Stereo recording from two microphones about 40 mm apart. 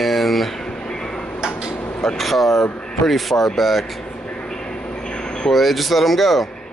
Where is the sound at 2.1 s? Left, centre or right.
Centre.